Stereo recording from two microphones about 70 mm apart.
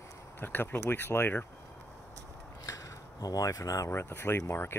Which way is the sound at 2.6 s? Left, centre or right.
Left.